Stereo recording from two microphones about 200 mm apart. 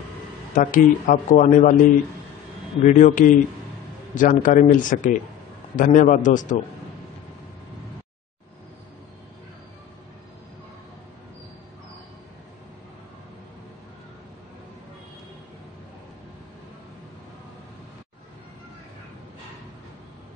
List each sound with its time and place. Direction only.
0.5 s speech: 40° left (ahead or behind)
2.8 s speech: 40° left (ahead or behind)